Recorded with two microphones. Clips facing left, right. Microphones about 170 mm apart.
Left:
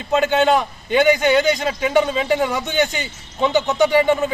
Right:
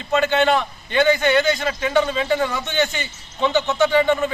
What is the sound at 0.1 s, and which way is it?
A man's voice, 15° left (ahead or behind).